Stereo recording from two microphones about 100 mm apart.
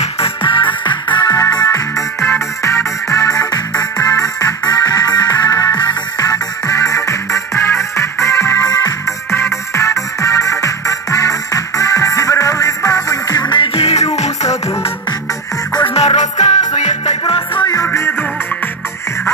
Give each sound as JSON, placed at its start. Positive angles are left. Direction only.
{"t": 0.0, "sound": "music", "side_deg": 70}
{"t": 13.7, "sound": "music", "side_deg": 85}
{"t": 15.9, "sound": "music", "side_deg": 80}
{"t": 17.2, "sound": "music", "side_deg": 50}
{"t": 17.8, "sound": "music", "side_deg": 25}